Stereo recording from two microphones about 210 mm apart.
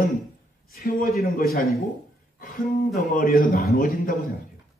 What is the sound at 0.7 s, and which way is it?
Speech, 45° left (ahead or behind).